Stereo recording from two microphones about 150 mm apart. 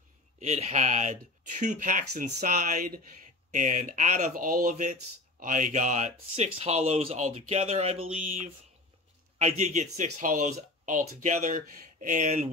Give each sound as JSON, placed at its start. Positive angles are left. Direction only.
{"t": 0.4, "sound": "speech", "side_deg": -45}
{"t": 9.4, "sound": "speech", "side_deg": -45}